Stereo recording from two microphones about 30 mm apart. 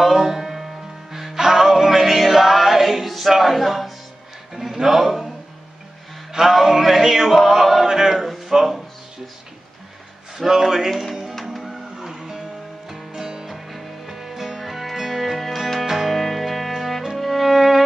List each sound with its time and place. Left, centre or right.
0.0 s music: centre
4.8 s speech: centre
6.3 s music: centre
7.8 s a sound: centre
8.5 s speech: centre
10.4 s music: centre
10.9 s speech: centre
12.0 s music: centre
13.5 s music: centre
15.8 s music: centre
16.1 s music: centre